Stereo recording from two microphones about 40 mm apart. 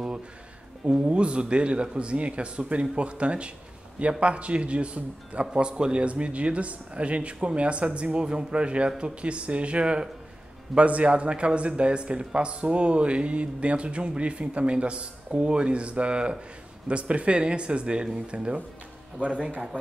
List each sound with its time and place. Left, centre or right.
0.8 s a man's voice: right
5.5 s speech: right
19.2 s a man's voice: left